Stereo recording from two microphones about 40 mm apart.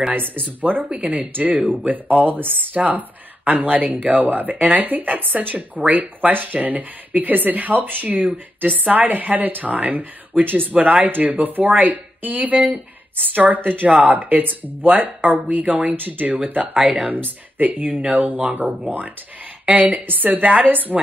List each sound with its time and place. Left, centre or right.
0.1 s speech: right
0.8 s speech: right
1.3 s speech: right
10.7 s speech: right
11.1 s speech: right
15.6 s speech: right
16.8 s speech: right
17.6 s speech: right